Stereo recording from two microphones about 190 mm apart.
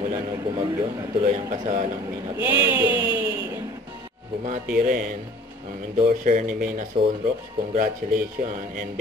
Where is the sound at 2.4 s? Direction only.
10° right (ahead or behind).